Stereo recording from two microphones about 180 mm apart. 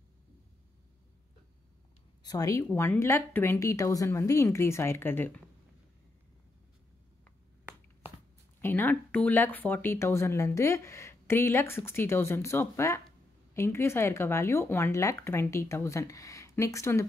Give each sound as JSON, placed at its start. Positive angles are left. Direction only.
{"t": 2.2, "sound": "speech", "side_deg": 20}
{"t": 8.5, "sound": "speech", "side_deg": 10}